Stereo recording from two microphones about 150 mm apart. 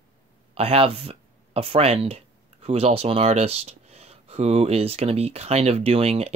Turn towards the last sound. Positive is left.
turn(degrees=-45)  # may be behind; listen again after turning